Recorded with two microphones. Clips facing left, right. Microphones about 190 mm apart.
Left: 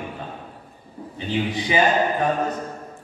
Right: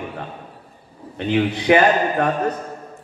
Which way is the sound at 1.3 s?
65° right (ahead or behind).